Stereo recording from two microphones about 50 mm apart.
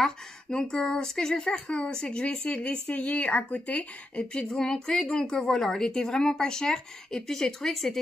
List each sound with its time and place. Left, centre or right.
0.0 s speech: centre